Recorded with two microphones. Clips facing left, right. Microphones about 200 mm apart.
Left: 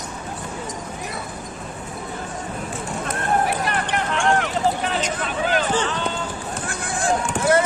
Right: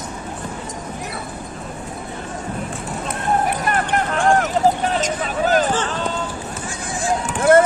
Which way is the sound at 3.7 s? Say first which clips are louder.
Right 3 dB; 45° right (ahead or behind).